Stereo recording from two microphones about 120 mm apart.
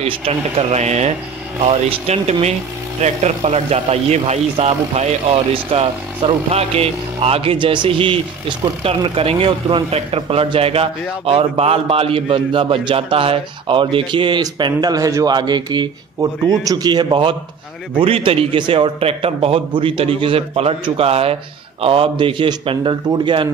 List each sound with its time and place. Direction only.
0.0 s speech: 55° right (ahead or behind)
14.4 s speech: 35° right (ahead or behind)